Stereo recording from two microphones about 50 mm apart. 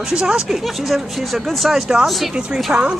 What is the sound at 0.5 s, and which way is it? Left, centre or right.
Speech, centre.